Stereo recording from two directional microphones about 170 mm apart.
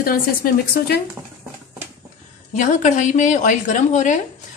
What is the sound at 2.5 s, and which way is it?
A woman's voice, 50° left (ahead or behind).